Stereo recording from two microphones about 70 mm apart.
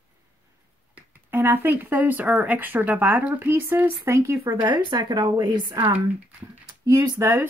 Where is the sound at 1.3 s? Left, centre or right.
Right.